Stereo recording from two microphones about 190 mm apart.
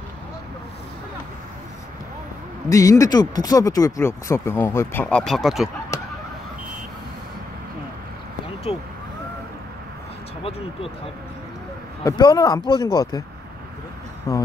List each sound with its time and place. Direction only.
2.7 s speech: 15° left (ahead or behind); by 5.7 s centre (ahead or behind)
8.7 s speech: 30° left (ahead or behind)
12.0 s speech: 20° left (ahead or behind)
14.3 s speech: 15° left (ahead or behind)